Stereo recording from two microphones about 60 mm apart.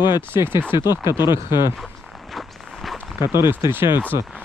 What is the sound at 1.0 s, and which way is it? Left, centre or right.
Speech, right.